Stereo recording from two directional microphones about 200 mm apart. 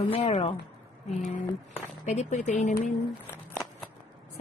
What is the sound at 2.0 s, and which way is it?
Speech, 35° left (ahead or behind).